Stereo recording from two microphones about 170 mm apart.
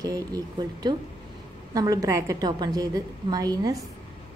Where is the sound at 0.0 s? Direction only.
20° right (ahead or behind).